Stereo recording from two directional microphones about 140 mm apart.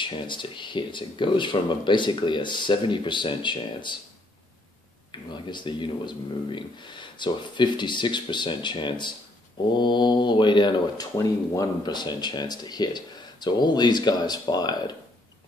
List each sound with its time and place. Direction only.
0.0 s speech: 35° left (ahead or behind)
5.1 s speech: 35° left (ahead or behind)